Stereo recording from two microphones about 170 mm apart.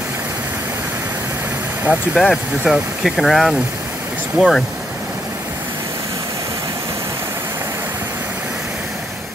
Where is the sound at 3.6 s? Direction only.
15° right (ahead or behind).